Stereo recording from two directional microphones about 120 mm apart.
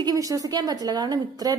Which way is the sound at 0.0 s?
30° right (ahead or behind).